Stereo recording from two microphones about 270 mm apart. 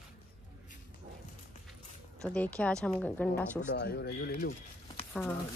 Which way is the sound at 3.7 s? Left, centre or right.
Left.